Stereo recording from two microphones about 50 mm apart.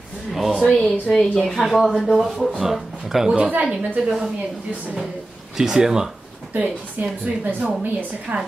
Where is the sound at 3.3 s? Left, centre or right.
Right.